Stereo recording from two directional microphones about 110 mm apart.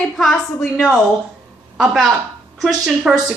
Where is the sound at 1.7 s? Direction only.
Centre (ahead or behind).